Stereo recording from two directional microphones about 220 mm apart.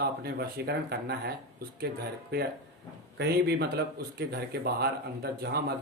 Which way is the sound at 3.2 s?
50° right (ahead or behind).